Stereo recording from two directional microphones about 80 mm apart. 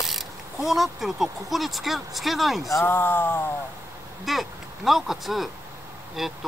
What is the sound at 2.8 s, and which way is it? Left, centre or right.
Speech, left.